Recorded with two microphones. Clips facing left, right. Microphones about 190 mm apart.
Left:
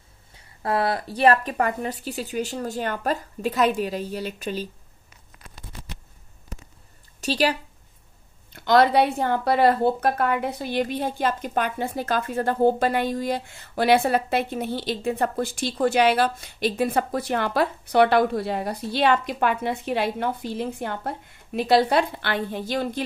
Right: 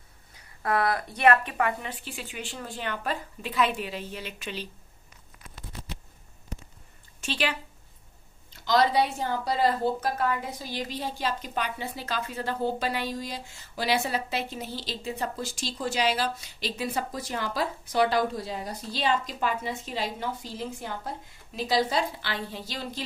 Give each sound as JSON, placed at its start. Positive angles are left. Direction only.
{"t": 0.3, "sound": "a woman's voice", "side_deg": 30}
{"t": 7.2, "sound": "a woman's voice", "side_deg": 40}
{"t": 8.5, "sound": "speech", "side_deg": 60}